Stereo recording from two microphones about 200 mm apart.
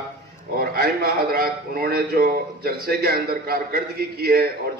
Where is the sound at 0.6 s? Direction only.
50° right (ahead or behind).